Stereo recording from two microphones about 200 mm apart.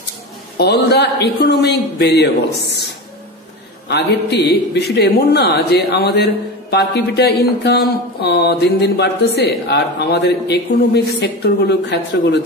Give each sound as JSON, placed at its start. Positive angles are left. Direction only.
{"t": 0.6, "sound": "a man's voice", "side_deg": 55}
{"t": 3.9, "sound": "a man's voice", "side_deg": 55}